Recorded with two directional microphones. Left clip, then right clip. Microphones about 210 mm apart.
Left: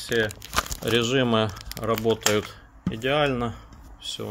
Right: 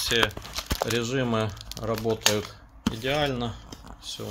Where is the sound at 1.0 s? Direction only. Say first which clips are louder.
Left 5 dB; 35° left (ahead or behind).